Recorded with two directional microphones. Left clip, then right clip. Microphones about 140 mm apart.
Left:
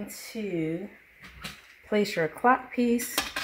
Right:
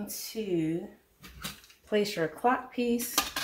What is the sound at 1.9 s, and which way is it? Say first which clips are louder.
Speech: left 2 dB; 90° left.